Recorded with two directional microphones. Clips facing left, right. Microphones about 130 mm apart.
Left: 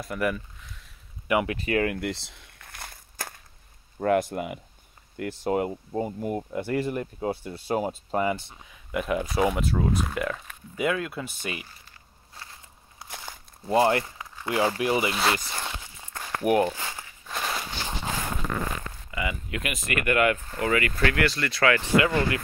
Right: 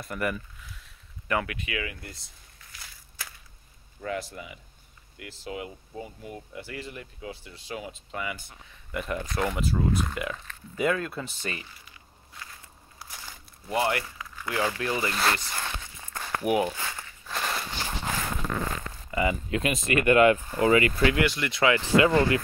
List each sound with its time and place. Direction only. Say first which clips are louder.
0.0 s speech: left 3 dB; centre (ahead or behind)
1.2 s speech: left 4 dB; 15° left (ahead or behind)
1.5 s speech: left 8 dB; 35° left (ahead or behind)
1.8 s walk: left 10 dB; 65° left (ahead or behind)
4.0 s speech: left 10 dB; 55° left (ahead or behind); by 8.4 s 40° left (ahead or behind)
8.9 s speech: left 5 dB; 5° left (ahead or behind)
12.4 s crackle: even; 30° left (ahead or behind)
13.7 s speech: left 5 dB; 30° left (ahead or behind)
15.0 s speech: left 2 dB; 10° left (ahead or behind)
15.5 s walk: even; 20° left (ahead or behind)
16.3 s speech: left 3 dB; 5° right (ahead or behind)
17.3 s walk: even; 5° left (ahead or behind)
19.0 s speech: right 6 dB; 35° right (ahead or behind)